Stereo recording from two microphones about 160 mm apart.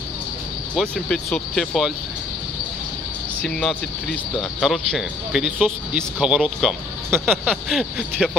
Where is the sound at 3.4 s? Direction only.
5° left (ahead or behind).